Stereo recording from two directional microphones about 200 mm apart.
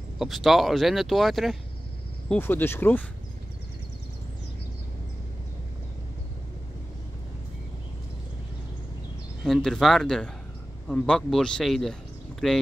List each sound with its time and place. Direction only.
0.2 s speech: centre (ahead or behind)
9.4 s speech: centre (ahead or behind)